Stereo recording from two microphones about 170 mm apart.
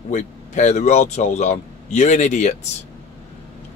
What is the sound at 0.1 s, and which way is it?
Speech, 45° left (ahead or behind).